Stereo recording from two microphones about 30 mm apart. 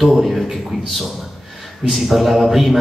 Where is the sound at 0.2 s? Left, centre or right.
Centre.